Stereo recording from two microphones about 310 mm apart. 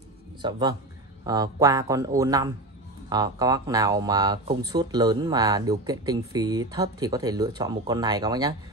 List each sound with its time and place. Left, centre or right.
0.4 s speech: centre